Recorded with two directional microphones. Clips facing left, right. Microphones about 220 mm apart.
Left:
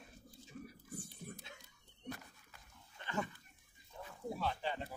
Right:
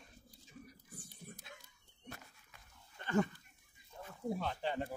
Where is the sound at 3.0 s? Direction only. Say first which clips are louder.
Right 7 dB; 45° right (ahead or behind).